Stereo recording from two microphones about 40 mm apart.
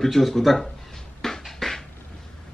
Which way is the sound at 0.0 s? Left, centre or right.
Centre.